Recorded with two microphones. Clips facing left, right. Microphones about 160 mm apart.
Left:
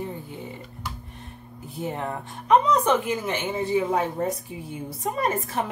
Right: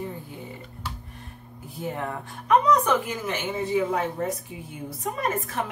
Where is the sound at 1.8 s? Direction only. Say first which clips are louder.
Left 1 dB; 25° left (ahead or behind).